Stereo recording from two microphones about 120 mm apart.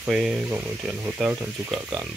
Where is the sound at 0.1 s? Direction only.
5° right (ahead or behind).